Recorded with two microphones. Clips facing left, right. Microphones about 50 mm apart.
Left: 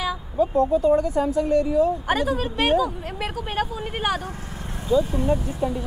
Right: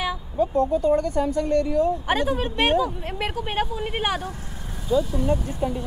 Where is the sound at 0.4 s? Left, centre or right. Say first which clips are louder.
Left 2 dB; centre.